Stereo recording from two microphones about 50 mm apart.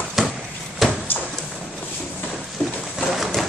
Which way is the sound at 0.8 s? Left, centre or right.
Centre.